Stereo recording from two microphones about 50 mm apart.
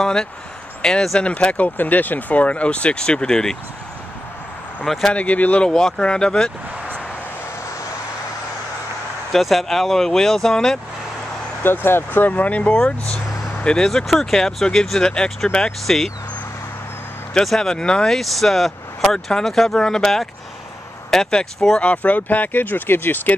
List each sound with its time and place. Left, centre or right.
0.0 s speech: centre
1.2 s speech: left
5.1 s speech: left
5.6 s speech: centre
9.3 s speech: centre
11.6 s speech: left
12.1 s speech: left
13.8 s speech: centre
17.6 s speech: centre
21.7 s speech: left